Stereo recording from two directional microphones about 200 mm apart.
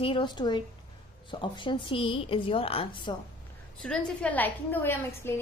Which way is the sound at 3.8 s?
5° left (ahead or behind).